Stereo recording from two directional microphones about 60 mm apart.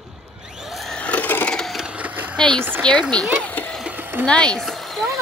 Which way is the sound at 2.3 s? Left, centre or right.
Centre.